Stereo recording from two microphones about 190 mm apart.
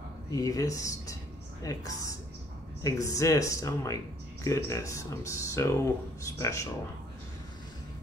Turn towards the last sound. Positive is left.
turn(degrees=15)  # may be behind; listen again after turning